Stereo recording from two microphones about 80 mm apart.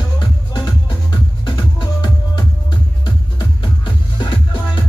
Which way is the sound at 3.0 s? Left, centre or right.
Left.